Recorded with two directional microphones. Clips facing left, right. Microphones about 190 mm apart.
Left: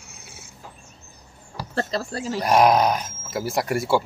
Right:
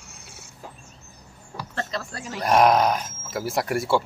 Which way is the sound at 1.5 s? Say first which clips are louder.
Left 4 dB; 35° left (ahead or behind).